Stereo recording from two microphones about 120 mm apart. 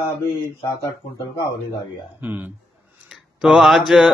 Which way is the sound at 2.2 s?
15° right (ahead or behind).